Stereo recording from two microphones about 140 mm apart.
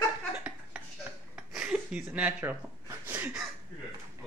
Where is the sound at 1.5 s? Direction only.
5° right (ahead or behind).